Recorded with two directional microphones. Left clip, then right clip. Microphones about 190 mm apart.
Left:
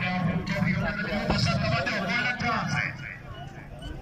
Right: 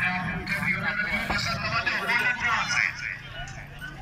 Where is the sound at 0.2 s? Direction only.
55° left (ahead or behind).